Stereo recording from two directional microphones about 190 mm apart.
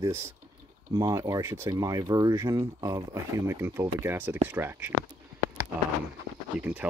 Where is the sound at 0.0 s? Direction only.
10° right (ahead or behind).